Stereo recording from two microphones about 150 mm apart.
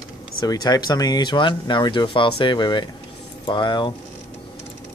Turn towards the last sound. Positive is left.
turn(degrees=30)  # may be behind; listen again after turning